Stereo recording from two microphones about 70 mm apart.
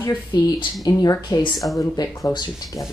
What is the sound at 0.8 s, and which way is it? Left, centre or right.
Speech, left.